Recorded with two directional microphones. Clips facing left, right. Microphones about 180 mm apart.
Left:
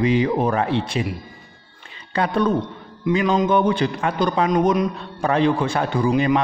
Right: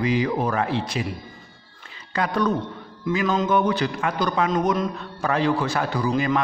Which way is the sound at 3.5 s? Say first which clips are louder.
Left 3 dB; 30° left (ahead or behind).